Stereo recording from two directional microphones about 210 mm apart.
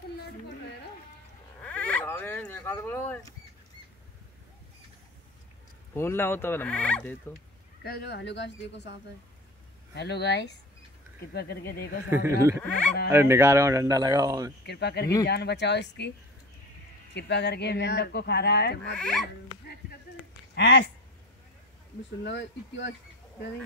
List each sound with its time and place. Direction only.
1.6 s frog: 5° left (ahead or behind)
5.9 s speech: 10° left (ahead or behind)
7.8 s speech: 50° left (ahead or behind)
9.9 s speech: 55° left (ahead or behind)
12.1 s a man's voice: 15° right (ahead or behind)
12.6 s speech: 5° left (ahead or behind)
13.1 s a man's voice: 10° right (ahead or behind)
14.7 s speech: 50° left (ahead or behind)
17.1 s speech: 55° left (ahead or behind)
18.9 s speech: 5° left (ahead or behind)
20.5 s speech: 55° left (ahead or behind)
22.2 s speech: 55° left (ahead or behind)